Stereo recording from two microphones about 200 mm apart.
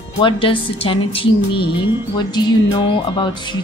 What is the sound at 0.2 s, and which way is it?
Speech, 25° left (ahead or behind).